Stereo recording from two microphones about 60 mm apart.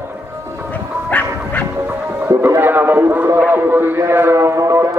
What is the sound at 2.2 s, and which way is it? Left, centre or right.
Speech, right.